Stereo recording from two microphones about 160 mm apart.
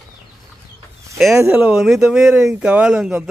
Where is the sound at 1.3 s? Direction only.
15° right (ahead or behind).